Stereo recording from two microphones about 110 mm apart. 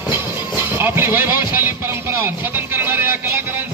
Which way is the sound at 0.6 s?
20° right (ahead or behind).